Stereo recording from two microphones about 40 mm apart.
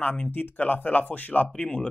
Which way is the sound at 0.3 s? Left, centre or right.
Left.